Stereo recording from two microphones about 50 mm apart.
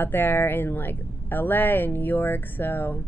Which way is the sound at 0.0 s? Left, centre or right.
Left.